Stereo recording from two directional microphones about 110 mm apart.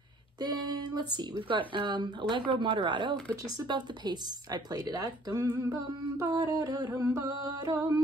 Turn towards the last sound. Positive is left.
turn(degrees=-30)  # may be behind; listen again after turning